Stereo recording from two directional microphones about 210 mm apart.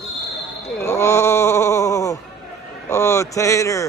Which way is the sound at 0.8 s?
15° left (ahead or behind).